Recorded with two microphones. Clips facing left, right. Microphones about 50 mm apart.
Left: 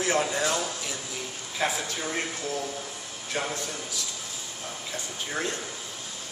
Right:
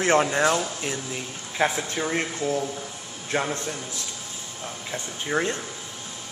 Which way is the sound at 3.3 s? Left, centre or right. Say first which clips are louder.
Right 5 dB; right.